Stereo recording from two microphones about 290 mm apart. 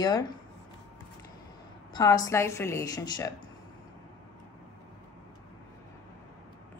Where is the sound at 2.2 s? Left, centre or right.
Centre.